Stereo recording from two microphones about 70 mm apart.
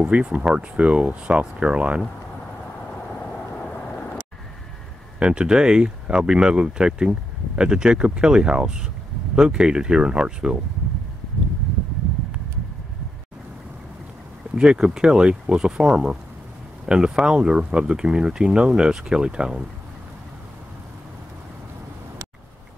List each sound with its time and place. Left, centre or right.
0.0 s speech: centre
5.2 s speech: centre
14.5 s speech: centre